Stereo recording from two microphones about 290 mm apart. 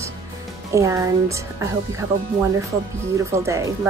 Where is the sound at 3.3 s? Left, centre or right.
Centre.